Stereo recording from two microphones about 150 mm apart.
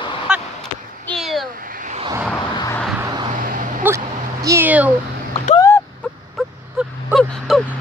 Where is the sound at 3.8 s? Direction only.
10° right (ahead or behind).